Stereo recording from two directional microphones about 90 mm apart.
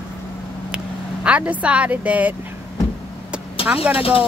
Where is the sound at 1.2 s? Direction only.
15° right (ahead or behind).